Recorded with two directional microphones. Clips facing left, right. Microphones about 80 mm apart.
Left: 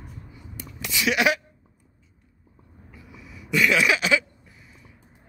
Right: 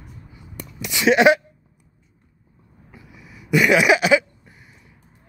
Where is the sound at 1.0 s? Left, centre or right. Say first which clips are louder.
Right 8 dB; right.